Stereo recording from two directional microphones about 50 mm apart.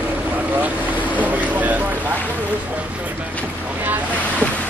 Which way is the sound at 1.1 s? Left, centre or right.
Right.